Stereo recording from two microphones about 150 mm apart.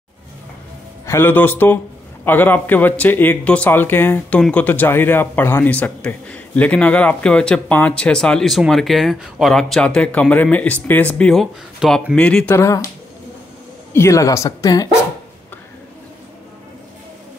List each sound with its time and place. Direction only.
1.0 s speech: 15° left (ahead or behind)
13.9 s a woman's voice: 20° left (ahead or behind)